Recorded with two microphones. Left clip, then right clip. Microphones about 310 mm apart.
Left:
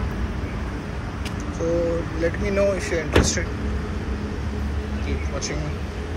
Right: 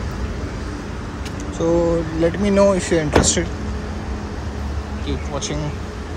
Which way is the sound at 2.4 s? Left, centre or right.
Right.